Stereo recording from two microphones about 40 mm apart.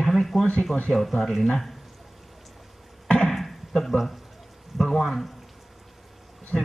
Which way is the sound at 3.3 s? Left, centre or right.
Centre.